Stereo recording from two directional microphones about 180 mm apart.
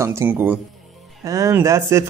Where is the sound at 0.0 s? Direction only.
15° right (ahead or behind).